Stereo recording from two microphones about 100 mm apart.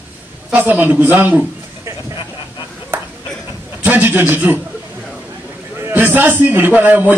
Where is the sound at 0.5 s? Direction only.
20° right (ahead or behind).